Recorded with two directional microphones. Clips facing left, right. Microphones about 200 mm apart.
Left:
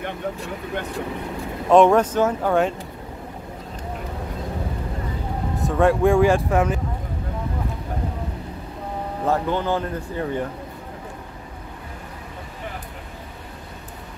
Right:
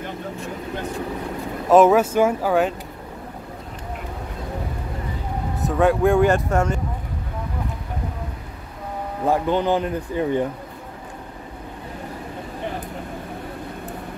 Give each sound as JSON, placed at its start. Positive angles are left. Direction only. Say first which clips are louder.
{"t": 1.7, "sound": "speech", "louder": "right 1 dB", "side_deg": -5}
{"t": 5.6, "sound": "speech", "louder": "even", "side_deg": 0}
{"t": 9.2, "sound": "speech", "louder": "right 3 dB", "side_deg": -15}